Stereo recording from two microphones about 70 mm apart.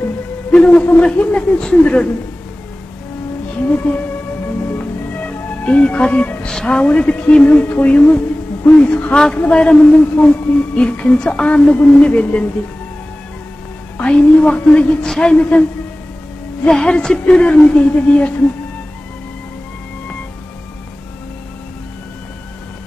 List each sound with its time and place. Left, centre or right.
0.5 s a sound: centre
1.1 s a woman's voice: centre
3.6 s speech: left
4.7 s music: left
6.5 s a woman's voice: centre
13.9 s a woman's voice: centre
16.6 s a woman's voice: centre